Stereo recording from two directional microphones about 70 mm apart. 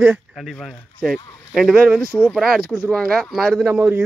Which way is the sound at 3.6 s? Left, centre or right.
Right.